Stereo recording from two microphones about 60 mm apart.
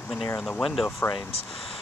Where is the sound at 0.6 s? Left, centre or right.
Centre.